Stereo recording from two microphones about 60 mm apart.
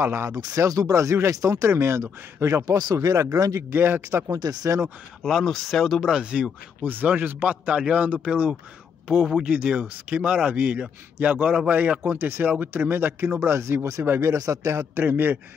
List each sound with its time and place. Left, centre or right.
0.0 s speech: right
0.3 s speech: right
1.3 s speech: right
1.7 s speech: right
2.6 s speech: right
3.7 s speech: right
4.3 s speech: right
5.2 s speech: centre
6.1 s speech: centre
6.8 s speech: right
12.2 s speech: right
13.6 s a man's voice: right
15.0 s speech: right